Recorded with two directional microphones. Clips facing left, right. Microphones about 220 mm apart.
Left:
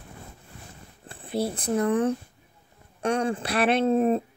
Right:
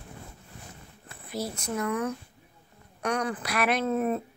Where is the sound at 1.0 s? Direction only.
30° left (ahead or behind).